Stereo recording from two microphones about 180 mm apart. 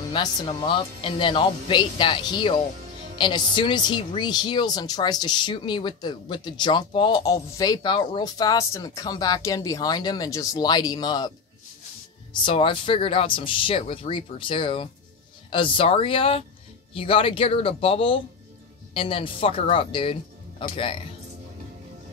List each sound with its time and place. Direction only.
0.1 s a woman's voice: 25° left (ahead or behind)